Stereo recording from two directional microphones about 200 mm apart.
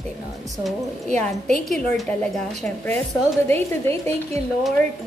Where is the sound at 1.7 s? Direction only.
Centre (ahead or behind).